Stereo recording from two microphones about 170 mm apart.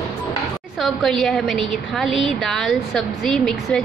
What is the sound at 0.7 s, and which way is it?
A woman's voice, centre (ahead or behind).